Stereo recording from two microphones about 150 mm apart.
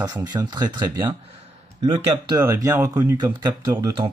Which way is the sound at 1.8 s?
40° right (ahead or behind).